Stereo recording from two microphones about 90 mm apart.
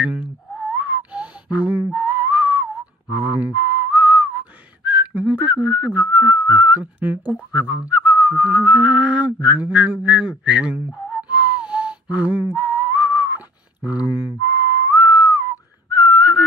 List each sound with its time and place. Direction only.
0.0 s whistling: 15° right (ahead or behind)
13.8 s speech: 20° right (ahead or behind)
15.0 s whistling: 20° right (ahead or behind)